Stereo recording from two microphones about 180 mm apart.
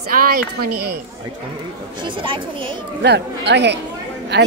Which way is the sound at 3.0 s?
70° right (ahead or behind).